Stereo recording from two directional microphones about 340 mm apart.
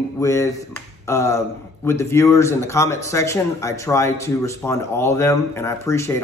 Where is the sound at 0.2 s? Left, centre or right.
Centre.